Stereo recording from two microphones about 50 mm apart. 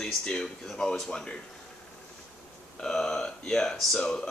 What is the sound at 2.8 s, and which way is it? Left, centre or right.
Speech, centre.